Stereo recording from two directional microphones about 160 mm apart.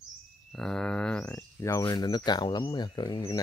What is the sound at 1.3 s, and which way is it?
Speech, 20° left (ahead or behind).